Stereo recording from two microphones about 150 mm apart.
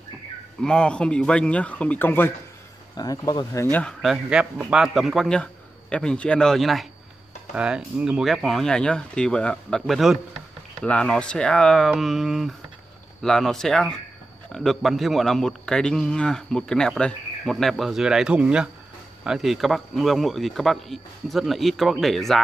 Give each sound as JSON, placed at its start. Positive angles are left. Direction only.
{"t": 0.6, "sound": "a man's voice", "side_deg": 5}
{"t": 3.0, "sound": "speech", "side_deg": 25}
{"t": 3.7, "sound": "speech", "side_deg": 5}